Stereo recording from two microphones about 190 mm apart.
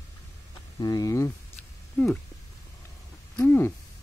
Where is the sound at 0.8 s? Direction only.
20° left (ahead or behind).